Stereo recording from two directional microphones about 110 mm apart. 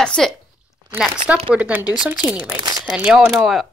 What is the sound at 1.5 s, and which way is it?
A woman's voice, 10° right (ahead or behind).